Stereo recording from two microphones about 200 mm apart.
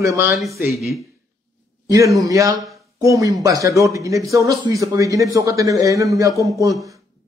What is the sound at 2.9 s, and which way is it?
A man's voice, 15° right (ahead or behind).